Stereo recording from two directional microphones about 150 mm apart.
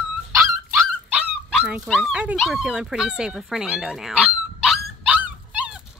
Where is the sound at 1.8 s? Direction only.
Centre (ahead or behind).